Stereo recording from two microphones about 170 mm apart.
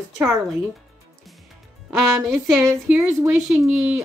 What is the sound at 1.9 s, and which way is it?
Speech, centre (ahead or behind).